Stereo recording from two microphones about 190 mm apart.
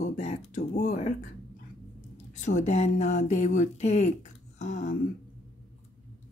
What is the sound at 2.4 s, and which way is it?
Speech, 40° left (ahead or behind).